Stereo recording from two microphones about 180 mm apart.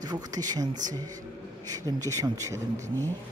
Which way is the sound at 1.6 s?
20° right (ahead or behind).